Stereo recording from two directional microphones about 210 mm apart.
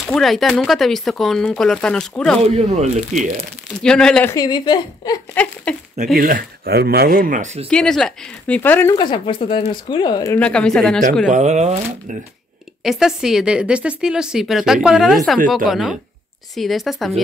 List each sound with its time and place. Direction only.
0.0 s speech: centre (ahead or behind)
2.5 s speech: 30° right (ahead or behind)
3.2 s speech: centre (ahead or behind); by 5.2 s 20° left (ahead or behind)
5.3 s speech: 5° left (ahead or behind)
6.1 s speech: 45° right (ahead or behind)
7.7 s speech: 5° left (ahead or behind)
8.9 s speech: 25° left (ahead or behind); by 11.0 s 5° left (ahead or behind)
11.2 s speech: 35° right (ahead or behind)
12.8 s speech: centre (ahead or behind)